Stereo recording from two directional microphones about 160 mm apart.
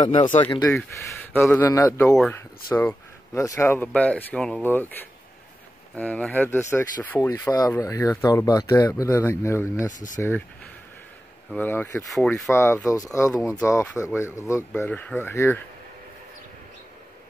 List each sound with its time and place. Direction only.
0.0 s speech: 30° left (ahead or behind)
1.3 s speech: 10° left (ahead or behind)
9.8 s speech: 50° left (ahead or behind)
10.1 s speech: 15° left (ahead or behind)
11.5 s speech: 10° left (ahead or behind)